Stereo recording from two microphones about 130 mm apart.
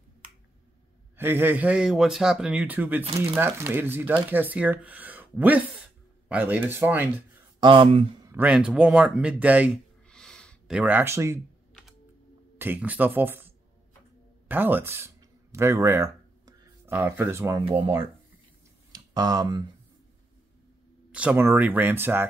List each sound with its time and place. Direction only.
1.1 s speech: 15° right (ahead or behind)
7.6 s speech: 40° right (ahead or behind)
8.3 s speech: 10° right (ahead or behind)
10.0 s a sound: 5° left (ahead or behind)
10.7 s speech: 10° right (ahead or behind)
12.5 s speech: 15° right (ahead or behind)
14.5 s speech: 15° right (ahead or behind)
17.6 s speech: 45° right (ahead or behind)
18.9 s a sound: 30° right (ahead or behind)
21.1 s speech: 10° right (ahead or behind)